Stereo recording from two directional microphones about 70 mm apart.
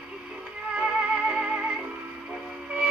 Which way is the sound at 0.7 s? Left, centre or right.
Centre.